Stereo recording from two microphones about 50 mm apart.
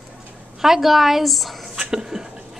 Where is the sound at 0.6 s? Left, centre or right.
Centre.